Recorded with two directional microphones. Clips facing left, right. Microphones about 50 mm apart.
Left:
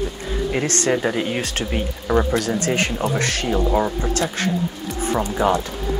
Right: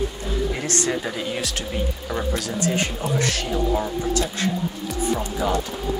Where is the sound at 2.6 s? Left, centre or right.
Left.